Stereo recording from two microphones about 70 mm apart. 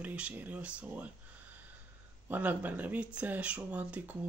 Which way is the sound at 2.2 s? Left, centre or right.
Right.